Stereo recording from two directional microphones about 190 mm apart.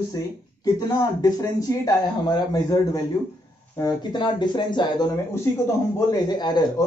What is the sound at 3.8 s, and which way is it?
Speech, 25° left (ahead or behind).